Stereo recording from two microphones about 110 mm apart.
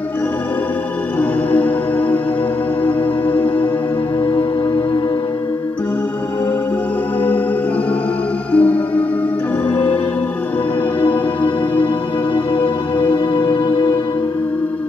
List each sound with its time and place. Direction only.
1.5 s music: 15° left (ahead or behind)
8.5 s music: 10° left (ahead or behind)
12.5 s music: 45° left (ahead or behind)